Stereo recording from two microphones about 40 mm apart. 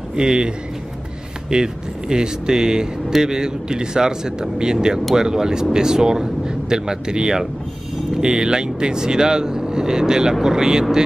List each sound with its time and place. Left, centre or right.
0.1 s a man's voice: right
1.5 s speech: centre